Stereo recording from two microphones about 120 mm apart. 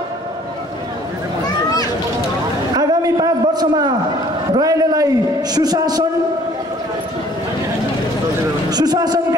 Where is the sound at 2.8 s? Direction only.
35° right (ahead or behind).